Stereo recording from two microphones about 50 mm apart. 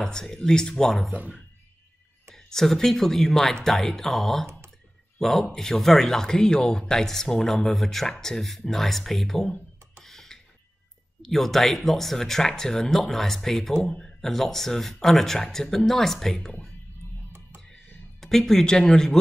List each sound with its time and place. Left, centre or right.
0.0 s speech: centre
2.2 s speech: centre
10.0 s a sound: centre
11.2 s speech: centre
18.2 s speech: centre